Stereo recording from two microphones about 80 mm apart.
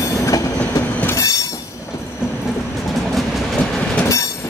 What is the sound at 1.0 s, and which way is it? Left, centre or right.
Train, left.